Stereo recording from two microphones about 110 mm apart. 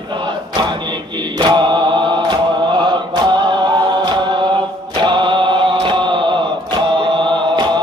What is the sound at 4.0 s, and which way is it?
Chant, 45° right (ahead or behind).